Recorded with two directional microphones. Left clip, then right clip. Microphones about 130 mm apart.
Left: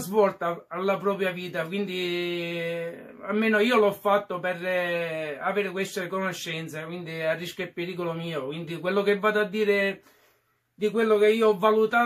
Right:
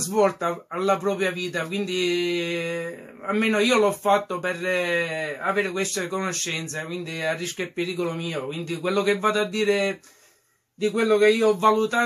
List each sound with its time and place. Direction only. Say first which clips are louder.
0.1 s speech: right 1 dB; 20° right (ahead or behind)